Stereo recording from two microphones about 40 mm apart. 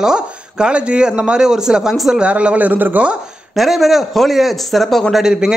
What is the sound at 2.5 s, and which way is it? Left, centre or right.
Speech, right.